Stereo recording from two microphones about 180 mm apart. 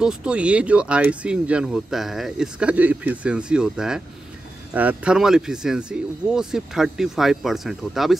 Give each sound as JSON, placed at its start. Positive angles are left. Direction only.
{"t": 0.0, "sound": "speech", "side_deg": -5}